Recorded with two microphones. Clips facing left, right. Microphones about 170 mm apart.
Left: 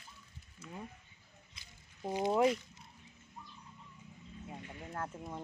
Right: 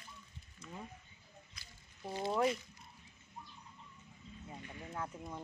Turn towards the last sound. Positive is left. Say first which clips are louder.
# left 2 dB
turn(degrees=5)  # may be behind; listen again after turning